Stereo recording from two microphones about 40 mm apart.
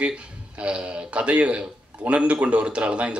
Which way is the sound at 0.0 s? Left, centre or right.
Right.